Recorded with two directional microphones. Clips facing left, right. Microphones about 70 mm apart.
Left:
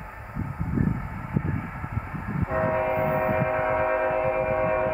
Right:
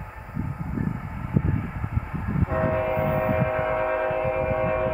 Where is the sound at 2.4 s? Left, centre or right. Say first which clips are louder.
Even; centre.